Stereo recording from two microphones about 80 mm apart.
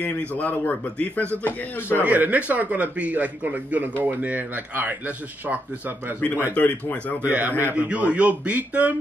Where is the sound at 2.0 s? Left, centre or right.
Centre.